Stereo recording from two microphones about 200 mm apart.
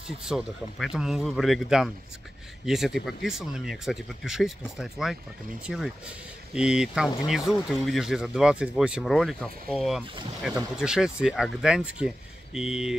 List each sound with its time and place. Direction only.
0.2 s speech: 5° right (ahead or behind)
6.5 s speech: 5° right (ahead or behind)